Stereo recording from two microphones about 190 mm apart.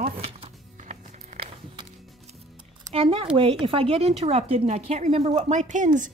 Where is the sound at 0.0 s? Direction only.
30° right (ahead or behind).